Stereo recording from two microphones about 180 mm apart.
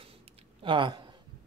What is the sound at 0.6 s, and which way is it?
Speech, 25° right (ahead or behind).